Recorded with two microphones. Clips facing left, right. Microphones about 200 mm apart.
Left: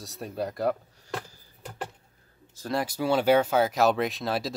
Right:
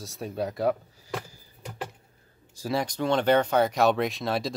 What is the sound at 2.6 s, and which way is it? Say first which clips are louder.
Speech: right 1 dB; centre (ahead or behind).